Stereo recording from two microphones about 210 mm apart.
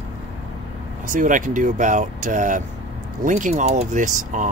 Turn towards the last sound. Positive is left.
turn(degrees=-35)  # may be behind; listen again after turning